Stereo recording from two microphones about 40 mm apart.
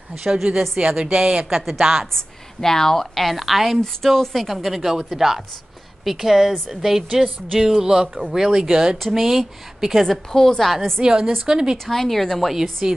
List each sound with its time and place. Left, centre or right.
0.2 s a woman's voice: centre
2.1 s speech: centre
3.8 s speech: centre
10.0 s speech: centre
11.0 s a woman's voice: right
11.8 s speech: centre
12.8 s speech: centre